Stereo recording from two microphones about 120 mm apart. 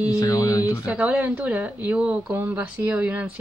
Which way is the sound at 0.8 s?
10° right (ahead or behind).